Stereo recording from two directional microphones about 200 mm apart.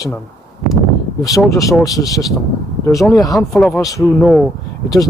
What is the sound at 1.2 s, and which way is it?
Speech, 15° left (ahead or behind).